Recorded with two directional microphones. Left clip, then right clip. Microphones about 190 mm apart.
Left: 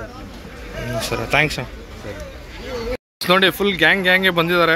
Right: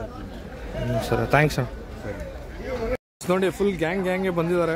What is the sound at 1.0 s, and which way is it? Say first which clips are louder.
Speech: left 3 dB; 30° right (ahead or behind).